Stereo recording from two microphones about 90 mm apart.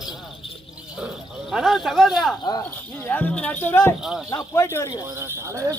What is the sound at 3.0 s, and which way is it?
Speech, 15° left (ahead or behind).